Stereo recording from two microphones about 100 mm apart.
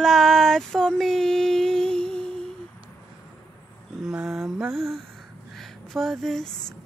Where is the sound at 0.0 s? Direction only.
Centre (ahead or behind).